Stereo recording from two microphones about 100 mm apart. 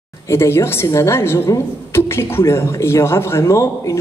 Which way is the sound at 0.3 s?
25° left (ahead or behind).